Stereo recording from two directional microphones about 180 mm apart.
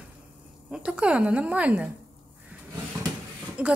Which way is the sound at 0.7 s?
5° right (ahead or behind).